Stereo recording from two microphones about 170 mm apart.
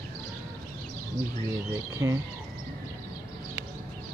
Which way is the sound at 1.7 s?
15° right (ahead or behind).